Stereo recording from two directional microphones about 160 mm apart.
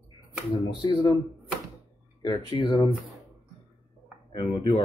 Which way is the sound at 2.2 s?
25° left (ahead or behind).